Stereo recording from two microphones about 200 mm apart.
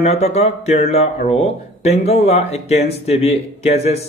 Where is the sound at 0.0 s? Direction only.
30° left (ahead or behind).